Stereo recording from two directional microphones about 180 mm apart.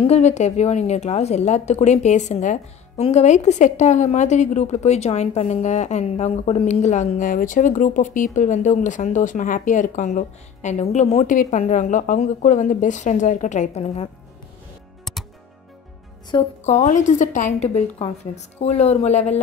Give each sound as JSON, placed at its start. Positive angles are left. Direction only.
{"t": 0.0, "sound": "a woman's voice", "side_deg": 40}
{"t": 16.3, "sound": "speech", "side_deg": 25}
{"t": 16.6, "sound": "a woman's voice", "side_deg": 40}